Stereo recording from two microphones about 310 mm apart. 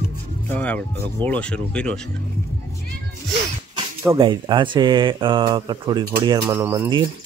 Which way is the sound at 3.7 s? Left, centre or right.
Centre.